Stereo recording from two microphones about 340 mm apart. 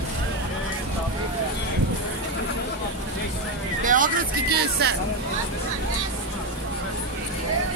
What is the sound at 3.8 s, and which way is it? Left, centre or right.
Music, right.